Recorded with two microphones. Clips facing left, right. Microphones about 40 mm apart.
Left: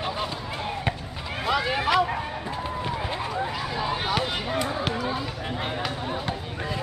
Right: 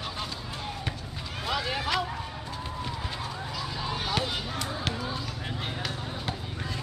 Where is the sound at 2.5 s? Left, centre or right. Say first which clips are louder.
Left 6 dB; left.